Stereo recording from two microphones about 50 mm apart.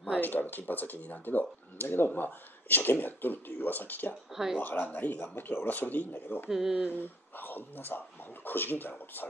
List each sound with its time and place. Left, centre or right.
0.2 s speech: left
4.3 s speech: centre
4.6 s speech: left
5.7 s speech: left